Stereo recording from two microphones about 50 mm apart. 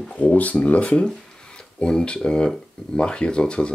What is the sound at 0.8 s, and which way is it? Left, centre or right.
Speech, left.